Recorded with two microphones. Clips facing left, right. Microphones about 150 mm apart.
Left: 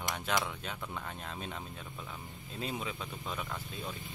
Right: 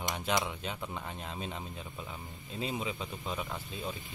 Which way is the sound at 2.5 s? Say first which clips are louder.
Right 3 dB; 5° right (ahead or behind).